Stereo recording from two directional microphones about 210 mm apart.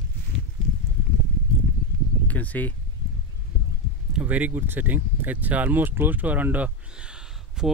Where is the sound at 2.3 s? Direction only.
5° left (ahead or behind).